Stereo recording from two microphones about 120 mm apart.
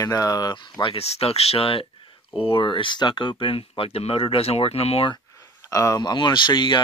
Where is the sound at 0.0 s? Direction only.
30° left (ahead or behind); by 5.1 s 55° left (ahead or behind).